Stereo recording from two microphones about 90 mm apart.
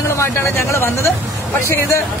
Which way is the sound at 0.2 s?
30° left (ahead or behind).